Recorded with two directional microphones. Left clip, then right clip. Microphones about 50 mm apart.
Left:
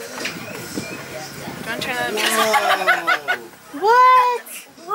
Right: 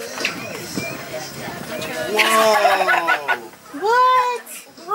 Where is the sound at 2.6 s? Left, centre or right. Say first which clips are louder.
Right 3 dB; right.